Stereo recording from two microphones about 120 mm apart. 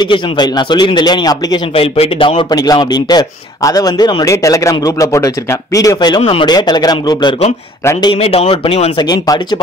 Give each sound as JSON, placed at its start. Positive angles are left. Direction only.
{"t": 0.0, "sound": "speech", "side_deg": 35}
{"t": 1.7, "sound": "speech", "side_deg": 50}
{"t": 2.5, "sound": "speech", "side_deg": 35}
{"t": 8.0, "sound": "speech", "side_deg": 50}
{"t": 8.9, "sound": "speech", "side_deg": 35}